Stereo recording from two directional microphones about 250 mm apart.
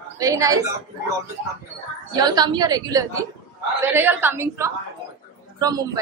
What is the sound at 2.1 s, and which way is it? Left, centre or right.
A woman's voice, centre.